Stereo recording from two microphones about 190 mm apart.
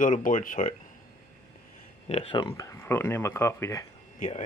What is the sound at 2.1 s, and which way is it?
Speech, 30° left (ahead or behind).